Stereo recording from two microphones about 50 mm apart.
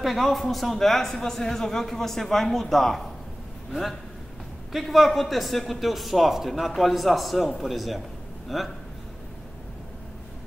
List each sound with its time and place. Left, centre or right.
0.0 s a man's voice: centre
4.7 s a man's voice: centre